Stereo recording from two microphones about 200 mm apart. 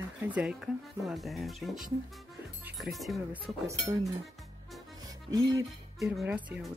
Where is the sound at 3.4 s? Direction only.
15° right (ahead or behind).